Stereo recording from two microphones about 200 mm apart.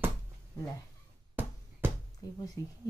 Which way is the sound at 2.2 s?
15° left (ahead or behind).